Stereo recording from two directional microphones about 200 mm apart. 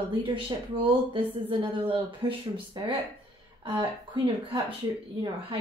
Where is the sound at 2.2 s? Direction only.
20° right (ahead or behind).